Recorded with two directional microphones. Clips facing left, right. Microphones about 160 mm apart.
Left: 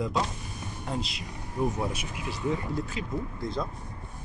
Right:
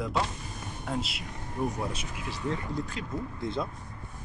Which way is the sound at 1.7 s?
10° left (ahead or behind).